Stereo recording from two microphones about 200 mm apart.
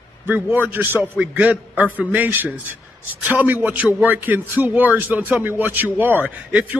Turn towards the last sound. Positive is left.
turn(degrees=-10)  # may be behind; listen again after turning